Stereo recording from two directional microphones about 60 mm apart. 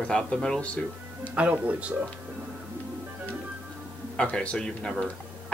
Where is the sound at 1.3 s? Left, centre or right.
Right.